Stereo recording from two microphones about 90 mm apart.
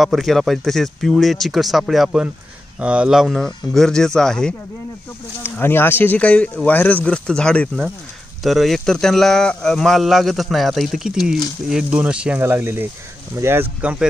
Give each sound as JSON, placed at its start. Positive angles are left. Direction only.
{"t": 0.0, "sound": "speech", "side_deg": 0}
{"t": 3.3, "sound": "speech", "side_deg": 5}
{"t": 5.4, "sound": "speech", "side_deg": 25}
{"t": 8.4, "sound": "speech", "side_deg": 0}
{"t": 12.4, "sound": "speech", "side_deg": -25}
{"t": 13.7, "sound": "speech", "side_deg": -15}